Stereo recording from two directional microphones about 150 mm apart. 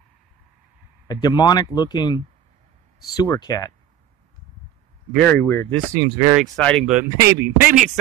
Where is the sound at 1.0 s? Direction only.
25° left (ahead or behind).